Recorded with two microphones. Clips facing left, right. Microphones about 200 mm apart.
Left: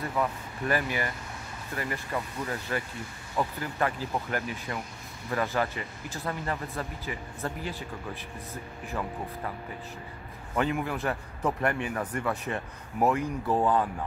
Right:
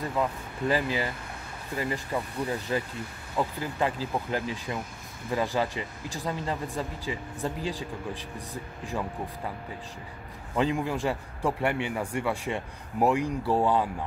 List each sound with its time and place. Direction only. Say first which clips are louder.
0.0 s speech: right 1 dB; 15° right (ahead or behind)
10.5 s speech: right 2 dB; 15° right (ahead or behind)